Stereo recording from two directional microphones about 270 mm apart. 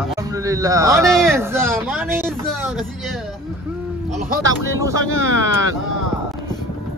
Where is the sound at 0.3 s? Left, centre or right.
Centre.